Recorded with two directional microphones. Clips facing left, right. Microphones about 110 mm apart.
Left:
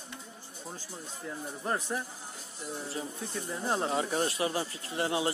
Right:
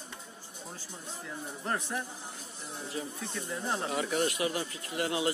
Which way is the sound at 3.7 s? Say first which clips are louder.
Left 2 dB; 30° left (ahead or behind).